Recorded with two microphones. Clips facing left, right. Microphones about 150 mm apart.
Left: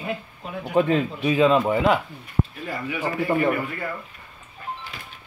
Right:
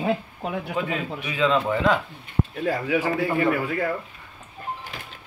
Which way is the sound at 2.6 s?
90° right.